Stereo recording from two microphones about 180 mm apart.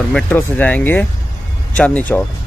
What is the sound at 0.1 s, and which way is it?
Speech, 10° left (ahead or behind).